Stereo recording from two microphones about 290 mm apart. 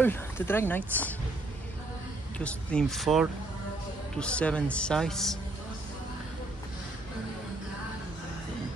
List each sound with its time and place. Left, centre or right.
0.0 s speech: centre
2.3 s speech: centre